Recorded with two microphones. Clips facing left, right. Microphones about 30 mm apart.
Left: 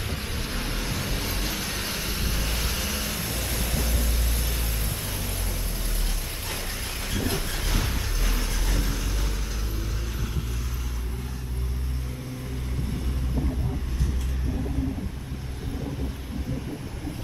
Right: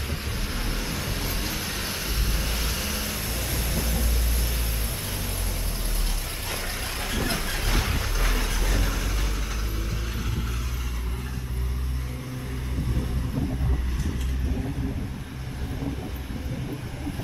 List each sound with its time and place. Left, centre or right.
0.3 s vehicle: centre
7.6 s a sound: right
8.0 s vehicle: right